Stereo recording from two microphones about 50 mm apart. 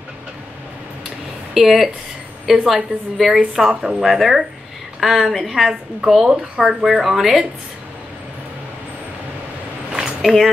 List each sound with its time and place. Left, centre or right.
1.5 s a woman's voice: centre
6.2 s a woman's voice: centre
6.8 s a woman's voice: centre
10.2 s a woman's voice: centre